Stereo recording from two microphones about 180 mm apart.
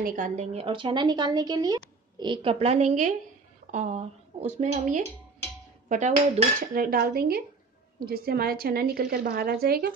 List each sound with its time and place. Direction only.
0.0 s a woman's voice: 50° right (ahead or behind)